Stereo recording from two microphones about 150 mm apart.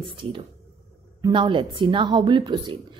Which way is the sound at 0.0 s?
35° right (ahead or behind).